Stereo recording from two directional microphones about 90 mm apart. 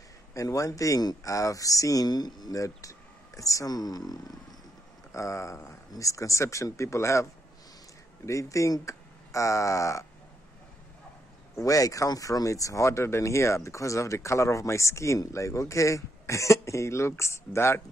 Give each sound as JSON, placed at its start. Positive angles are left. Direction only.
{"t": 0.3, "sound": "speech", "side_deg": 35}
{"t": 5.1, "sound": "speech", "side_deg": 35}
{"t": 8.3, "sound": "speech", "side_deg": 35}
{"t": 11.5, "sound": "speech", "side_deg": 40}